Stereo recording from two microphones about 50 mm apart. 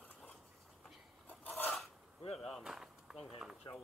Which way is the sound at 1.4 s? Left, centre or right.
Left.